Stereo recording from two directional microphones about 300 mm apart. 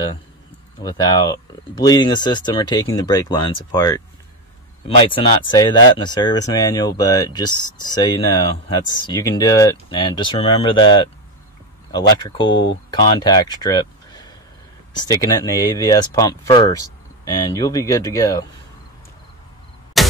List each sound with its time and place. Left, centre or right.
0.8 s speech: centre
12.4 s speech: left
12.9 s speech: centre
20.0 s a sound: centre